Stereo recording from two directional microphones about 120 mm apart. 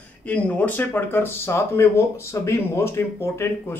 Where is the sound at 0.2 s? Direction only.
15° left (ahead or behind).